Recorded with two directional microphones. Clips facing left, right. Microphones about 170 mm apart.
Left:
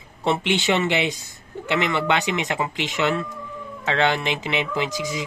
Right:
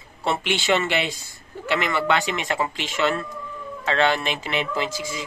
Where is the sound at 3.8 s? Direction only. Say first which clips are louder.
Even; 20° left (ahead or behind).